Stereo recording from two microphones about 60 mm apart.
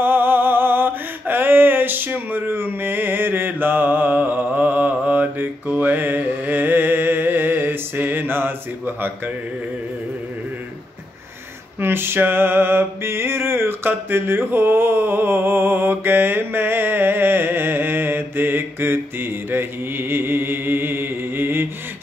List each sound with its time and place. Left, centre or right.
0.0 s mantra: right
11.8 s mantra: right